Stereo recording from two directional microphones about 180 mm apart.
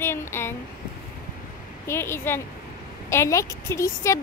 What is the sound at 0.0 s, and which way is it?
Speech, 15° left (ahead or behind).